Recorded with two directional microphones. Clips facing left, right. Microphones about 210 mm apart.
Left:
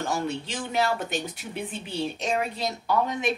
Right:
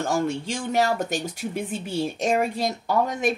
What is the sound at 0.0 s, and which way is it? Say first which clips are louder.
Speech: right 4 dB; 45° right (ahead or behind).